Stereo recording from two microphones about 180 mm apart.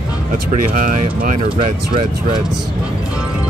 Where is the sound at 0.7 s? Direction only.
50° right (ahead or behind).